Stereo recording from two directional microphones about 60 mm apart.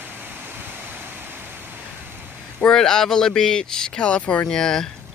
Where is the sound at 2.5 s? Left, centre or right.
Centre.